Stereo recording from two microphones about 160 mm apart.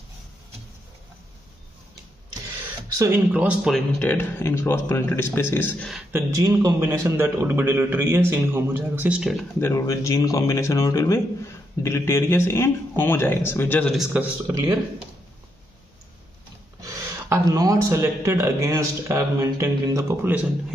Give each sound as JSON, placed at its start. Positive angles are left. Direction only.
{"t": 3.0, "sound": "a man's voice", "side_deg": -10}
{"t": 4.0, "sound": "speech", "side_deg": 10}
{"t": 6.1, "sound": "a man's voice", "side_deg": -20}
{"t": 9.6, "sound": "speech", "side_deg": 15}
{"t": 13.9, "sound": "speech", "side_deg": -5}
{"t": 14.5, "sound": "speech", "side_deg": -20}
{"t": 16.8, "sound": "speech", "side_deg": -20}